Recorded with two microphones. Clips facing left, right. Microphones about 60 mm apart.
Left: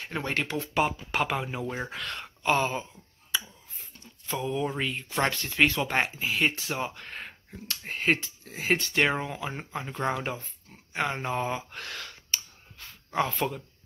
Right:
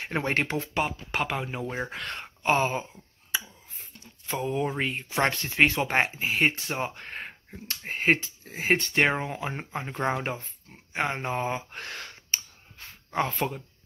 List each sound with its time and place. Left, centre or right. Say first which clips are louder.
0.0 s speech: right 3 dB; right
0.7 s speech: left 3 dB; centre
2.0 s speech: right 1 dB; centre
2.8 s a sound: right 1 dB; centre
4.4 s speech: right 1 dB; centre
4.7 s speech: right 2 dB; right
5.1 s speech: right 2 dB; centre
5.6 s speech: right 2 dB; right
11.1 s a sound: right 1 dB; centre